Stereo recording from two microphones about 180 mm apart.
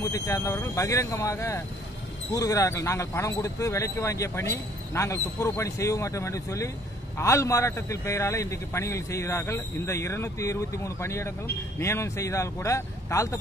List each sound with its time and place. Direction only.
0.0 s a man's voice: 15° left (ahead or behind)